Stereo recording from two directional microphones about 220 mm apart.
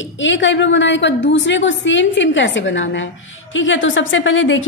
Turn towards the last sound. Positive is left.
turn(degrees=60)  # may be behind; listen again after turning